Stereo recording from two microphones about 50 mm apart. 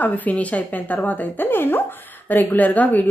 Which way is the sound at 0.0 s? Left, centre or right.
Left.